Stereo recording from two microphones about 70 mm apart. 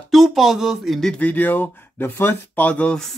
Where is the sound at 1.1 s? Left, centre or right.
Left.